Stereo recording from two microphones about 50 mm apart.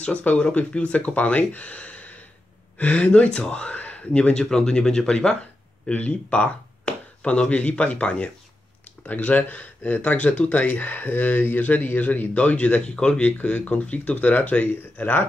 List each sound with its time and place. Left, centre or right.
0.0 s speech: left
5.9 s speech: left